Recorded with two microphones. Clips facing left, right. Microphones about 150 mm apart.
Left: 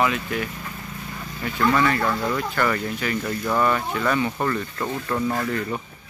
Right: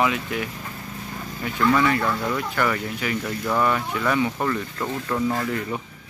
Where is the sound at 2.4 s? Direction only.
10° right (ahead or behind).